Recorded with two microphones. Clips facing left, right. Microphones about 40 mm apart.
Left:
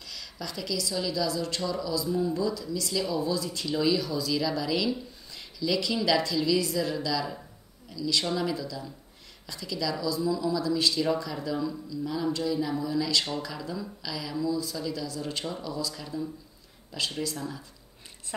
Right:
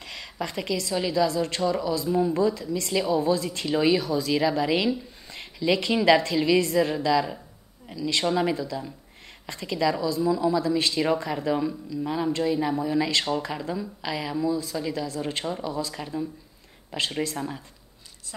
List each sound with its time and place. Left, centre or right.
0.0 s a woman's voice: right